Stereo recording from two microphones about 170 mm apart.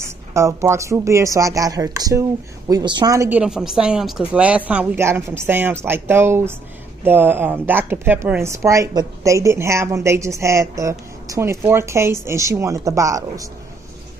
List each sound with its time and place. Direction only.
0.0 s speech: 15° right (ahead or behind)